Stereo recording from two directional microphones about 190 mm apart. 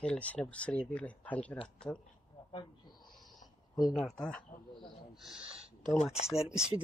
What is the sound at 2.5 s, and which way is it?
Speech, 20° left (ahead or behind).